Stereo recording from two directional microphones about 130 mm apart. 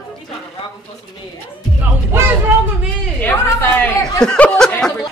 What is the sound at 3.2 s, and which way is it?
Speech, 20° left (ahead or behind).